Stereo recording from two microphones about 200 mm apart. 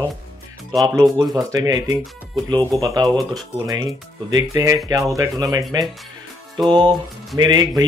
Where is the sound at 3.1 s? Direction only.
Centre (ahead or behind).